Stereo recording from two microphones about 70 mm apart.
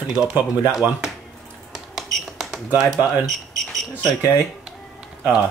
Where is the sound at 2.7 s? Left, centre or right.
Centre.